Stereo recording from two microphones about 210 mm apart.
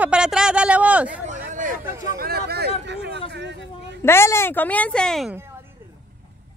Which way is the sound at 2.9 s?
55° right (ahead or behind).